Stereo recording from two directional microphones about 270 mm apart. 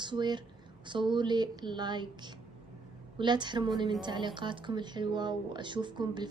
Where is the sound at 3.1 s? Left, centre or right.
Centre.